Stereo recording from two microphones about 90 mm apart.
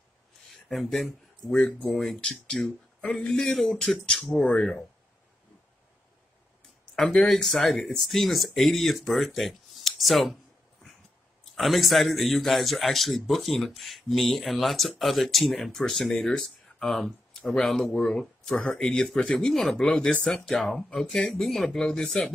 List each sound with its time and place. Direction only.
0.7 s speech: 5° left (ahead or behind)
3.3 s a man's voice: 5° left (ahead or behind)
7.0 s a man's voice: 10° left (ahead or behind)
11.5 s a man's voice: centre (ahead or behind)